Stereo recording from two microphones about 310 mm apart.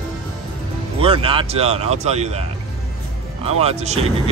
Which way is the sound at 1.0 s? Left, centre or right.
Centre.